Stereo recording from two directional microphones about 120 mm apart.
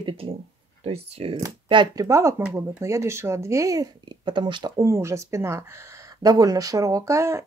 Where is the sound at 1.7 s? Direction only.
40° right (ahead or behind).